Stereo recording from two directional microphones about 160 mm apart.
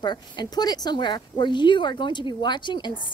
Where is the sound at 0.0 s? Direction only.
25° left (ahead or behind).